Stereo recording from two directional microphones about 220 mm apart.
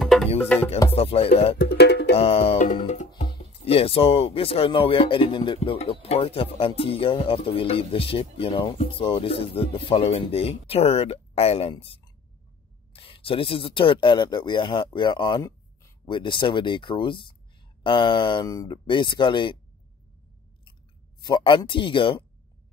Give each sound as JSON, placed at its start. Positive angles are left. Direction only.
{"t": 0.0, "sound": "music", "side_deg": 0}
{"t": 0.9, "sound": "speech", "side_deg": 25}
{"t": 1.6, "sound": "music", "side_deg": 50}
{"t": 2.1, "sound": "music", "side_deg": 25}
{"t": 3.2, "sound": "speech", "side_deg": 25}
{"t": 21.2, "sound": "speech", "side_deg": 20}